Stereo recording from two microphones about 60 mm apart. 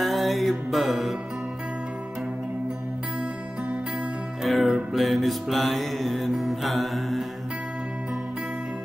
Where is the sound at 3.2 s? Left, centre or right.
Centre.